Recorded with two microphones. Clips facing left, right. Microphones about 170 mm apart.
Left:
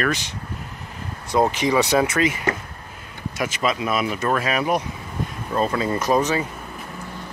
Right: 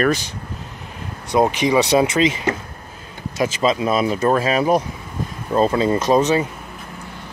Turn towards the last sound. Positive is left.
turn(degrees=-20)  # may be behind; listen again after turning